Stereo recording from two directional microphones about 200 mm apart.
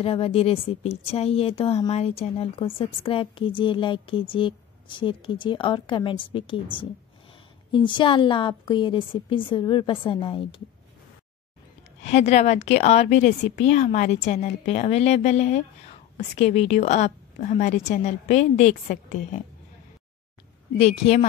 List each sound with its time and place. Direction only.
0.0 s a woman's voice: 30° left (ahead or behind)
12.0 s a woman's voice: 35° left (ahead or behind)
20.7 s a woman's voice: 30° left (ahead or behind)